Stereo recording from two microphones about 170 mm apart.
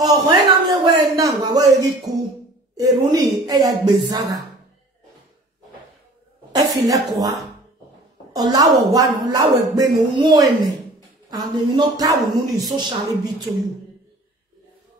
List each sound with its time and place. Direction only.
0.0 s a man's voice: 25° right (ahead or behind)
6.5 s speech: 20° right (ahead or behind)